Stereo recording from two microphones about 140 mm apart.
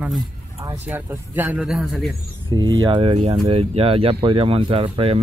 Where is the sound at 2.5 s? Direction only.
30° right (ahead or behind).